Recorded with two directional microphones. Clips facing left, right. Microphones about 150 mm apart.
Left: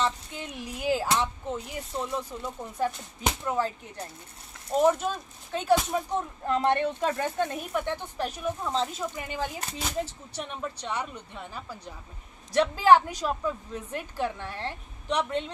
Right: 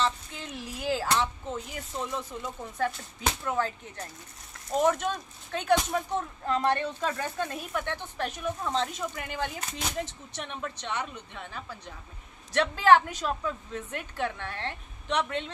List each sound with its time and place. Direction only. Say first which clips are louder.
0.0 s speech: left 1 dB; 10° left (ahead or behind)
6.4 s speech: left 3 dB; 20° left (ahead or behind)